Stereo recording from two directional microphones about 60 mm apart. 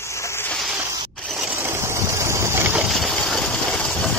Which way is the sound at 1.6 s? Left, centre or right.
Right.